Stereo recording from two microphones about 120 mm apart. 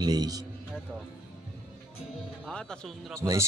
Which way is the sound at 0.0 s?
35° right (ahead or behind).